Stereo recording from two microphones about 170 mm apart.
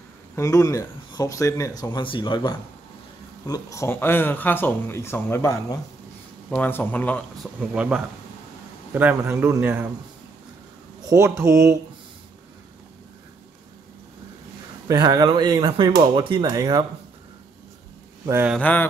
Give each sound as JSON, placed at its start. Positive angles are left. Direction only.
{"t": 0.4, "sound": "speech", "side_deg": 20}
{"t": 7.7, "sound": "a man's voice", "side_deg": -5}
{"t": 11.0, "sound": "a man's voice", "side_deg": -20}
{"t": 14.9, "sound": "speech", "side_deg": -20}
{"t": 18.2, "sound": "speech", "side_deg": -15}
{"t": 18.6, "sound": "speech", "side_deg": 10}